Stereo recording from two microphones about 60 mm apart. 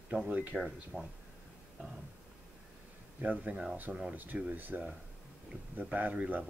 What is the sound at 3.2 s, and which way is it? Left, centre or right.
Speech, right.